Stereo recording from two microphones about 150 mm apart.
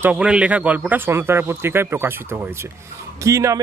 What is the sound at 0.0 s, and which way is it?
Speech, 10° right (ahead or behind).